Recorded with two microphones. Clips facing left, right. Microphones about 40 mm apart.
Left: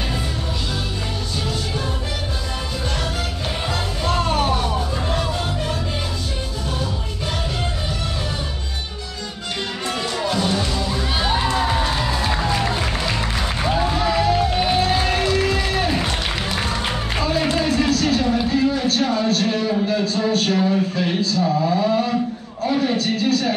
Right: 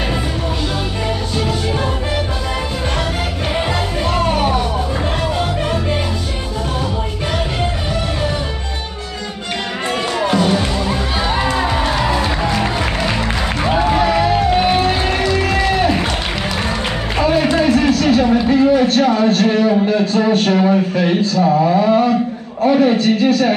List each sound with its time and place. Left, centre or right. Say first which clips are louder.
4.1 s music: right 3 dB; centre
10.3 s music: right 6 dB; right
17.2 s a sound: right 7 dB; right